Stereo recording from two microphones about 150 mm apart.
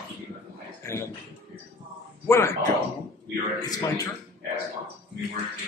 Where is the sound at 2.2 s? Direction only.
15° left (ahead or behind).